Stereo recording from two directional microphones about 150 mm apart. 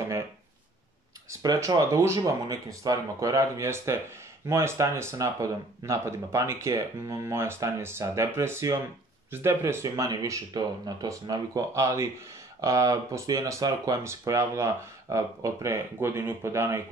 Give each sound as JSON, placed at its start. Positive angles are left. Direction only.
{"t": 1.4, "sound": "speech", "side_deg": -25}